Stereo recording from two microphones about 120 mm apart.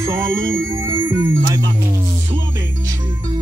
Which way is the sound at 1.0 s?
40° right (ahead or behind).